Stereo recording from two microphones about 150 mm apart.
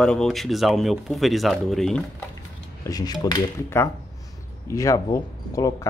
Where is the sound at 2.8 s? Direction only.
25° left (ahead or behind).